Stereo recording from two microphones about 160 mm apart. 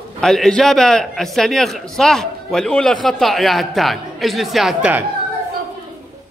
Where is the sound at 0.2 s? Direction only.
Centre (ahead or behind).